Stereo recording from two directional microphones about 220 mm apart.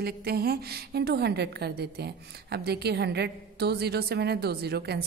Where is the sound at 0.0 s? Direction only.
45° right (ahead or behind).